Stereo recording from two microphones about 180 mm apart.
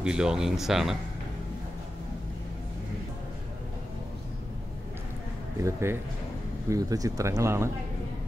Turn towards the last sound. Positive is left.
turn(degrees=-15)  # may be behind; listen again after turning